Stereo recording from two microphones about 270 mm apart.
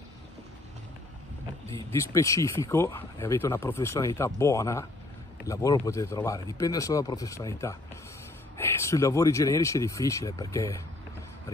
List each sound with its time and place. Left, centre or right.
2.0 s speech: centre